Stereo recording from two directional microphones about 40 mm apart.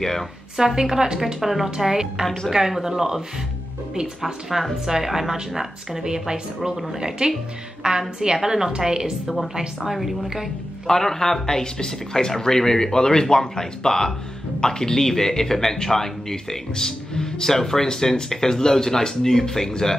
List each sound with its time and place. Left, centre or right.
0.0 s speech: centre
0.6 s a woman's voice: centre
1.2 s a woman's voice: centre
4.2 s a woman's voice: centre
9.8 s a woman's voice: centre
10.9 s speech: centre